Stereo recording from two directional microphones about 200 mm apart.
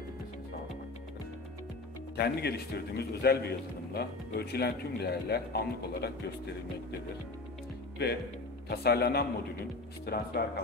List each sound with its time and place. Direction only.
2.1 s a man's voice: 55° left (ahead or behind)
8.6 s a man's voice: 55° left (ahead or behind)